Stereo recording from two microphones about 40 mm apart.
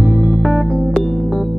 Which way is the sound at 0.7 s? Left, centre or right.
Left.